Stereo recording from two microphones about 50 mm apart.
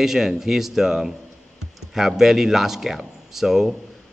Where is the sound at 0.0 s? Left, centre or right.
Centre.